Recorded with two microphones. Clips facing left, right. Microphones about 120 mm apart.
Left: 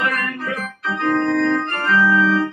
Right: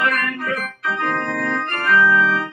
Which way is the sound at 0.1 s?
25° left (ahead or behind).